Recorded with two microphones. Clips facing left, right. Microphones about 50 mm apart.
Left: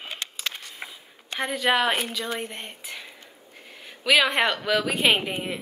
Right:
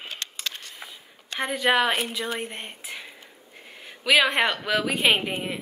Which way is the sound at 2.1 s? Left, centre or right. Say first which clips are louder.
Even; centre.